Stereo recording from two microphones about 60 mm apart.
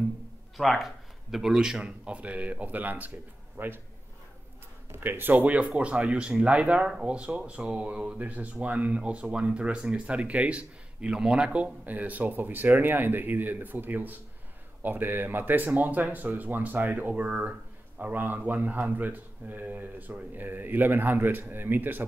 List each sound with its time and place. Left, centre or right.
0.6 s a man's voice: centre; by 3.8 s right
4.9 s speech: right